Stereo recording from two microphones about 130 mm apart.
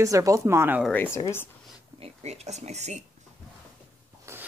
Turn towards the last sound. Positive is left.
turn(degrees=-20)  # may be behind; listen again after turning